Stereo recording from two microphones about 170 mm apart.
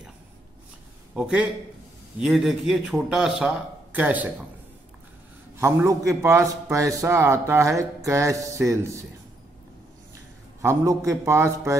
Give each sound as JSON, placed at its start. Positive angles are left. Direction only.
{"t": 1.1, "sound": "speech", "side_deg": -5}
{"t": 5.6, "sound": "a man's voice", "side_deg": -15}
{"t": 10.6, "sound": "a man's voice", "side_deg": -15}